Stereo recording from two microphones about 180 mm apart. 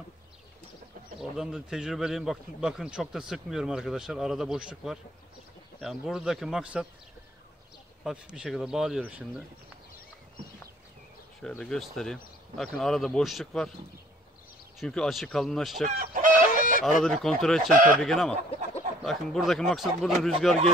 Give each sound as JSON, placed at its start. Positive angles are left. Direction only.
{"t": 1.2, "sound": "a man's voice", "side_deg": -5}
{"t": 8.0, "sound": "a man's voice", "side_deg": -5}
{"t": 11.4, "sound": "a man's voice", "side_deg": 5}
{"t": 14.8, "sound": "a man's voice", "side_deg": 0}
{"t": 15.8, "sound": "chicken", "side_deg": -40}
{"t": 16.5, "sound": "chicken", "side_deg": 50}
{"t": 17.0, "sound": "a man's voice", "side_deg": 0}